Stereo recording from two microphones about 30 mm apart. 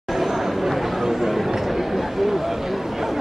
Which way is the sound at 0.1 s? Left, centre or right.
Centre.